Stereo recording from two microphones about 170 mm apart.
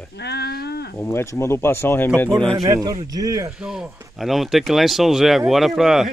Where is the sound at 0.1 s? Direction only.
75° left (ahead or behind).